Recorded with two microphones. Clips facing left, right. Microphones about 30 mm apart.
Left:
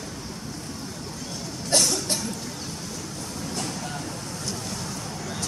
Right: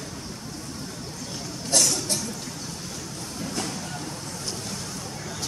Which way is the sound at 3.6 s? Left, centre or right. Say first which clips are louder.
Left 1 dB; centre.